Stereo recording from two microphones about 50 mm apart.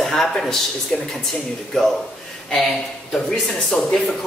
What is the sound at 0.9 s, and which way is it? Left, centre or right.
Speech, left.